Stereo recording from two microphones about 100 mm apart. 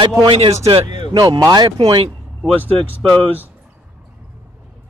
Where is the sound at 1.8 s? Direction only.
70° right (ahead or behind).